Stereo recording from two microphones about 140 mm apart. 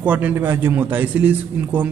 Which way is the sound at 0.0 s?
10° right (ahead or behind).